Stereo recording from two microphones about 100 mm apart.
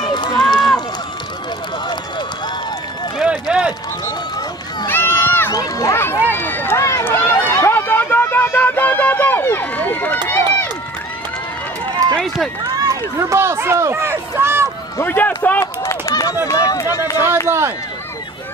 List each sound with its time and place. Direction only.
0.0 s run: 45° left (ahead or behind)
3.2 s run: 10° right (ahead or behind)
4.8 s run: 25° left (ahead or behind)
5.5 s run: 40° left (ahead or behind)
5.9 s run: 25° left (ahead or behind)
12.0 s run: 30° right (ahead or behind)
15.0 s run: 20° left (ahead or behind)
15.6 s run: 30° left (ahead or behind)
17.5 s speech: 25° right (ahead or behind)